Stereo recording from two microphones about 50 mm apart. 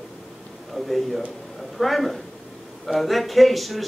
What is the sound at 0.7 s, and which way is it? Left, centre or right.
A man's voice, centre.